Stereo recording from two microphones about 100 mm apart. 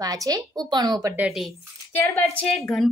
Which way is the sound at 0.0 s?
35° right (ahead or behind).